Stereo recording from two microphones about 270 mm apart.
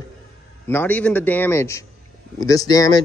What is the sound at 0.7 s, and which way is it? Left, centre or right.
Speech, centre.